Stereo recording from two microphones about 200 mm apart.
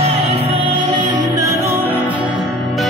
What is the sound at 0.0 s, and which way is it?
Music, 30° right (ahead or behind).